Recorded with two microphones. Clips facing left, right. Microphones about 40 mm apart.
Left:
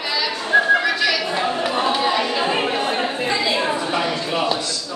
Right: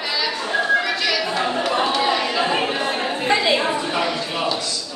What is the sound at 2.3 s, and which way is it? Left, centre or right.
Chatter, centre.